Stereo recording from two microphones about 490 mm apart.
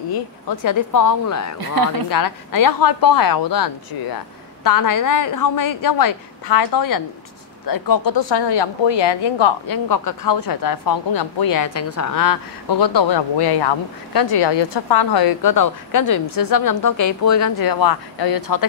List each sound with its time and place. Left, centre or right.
0.7 s a woman's voice: left